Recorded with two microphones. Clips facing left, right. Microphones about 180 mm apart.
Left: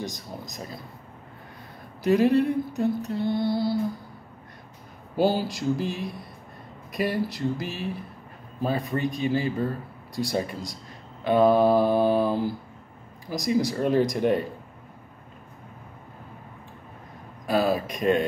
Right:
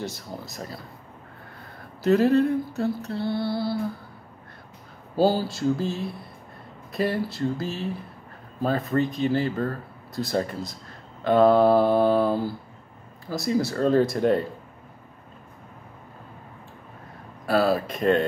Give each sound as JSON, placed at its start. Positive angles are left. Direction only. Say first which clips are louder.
{"t": 0.0, "sound": "speech", "louder": "right 1 dB", "side_deg": 15}
{"t": 2.0, "sound": "speech", "louder": "right 1 dB", "side_deg": 15}
{"t": 5.1, "sound": "speech", "louder": "right 2 dB", "side_deg": 20}
{"t": 17.5, "sound": "speech", "louder": "right 2 dB", "side_deg": 15}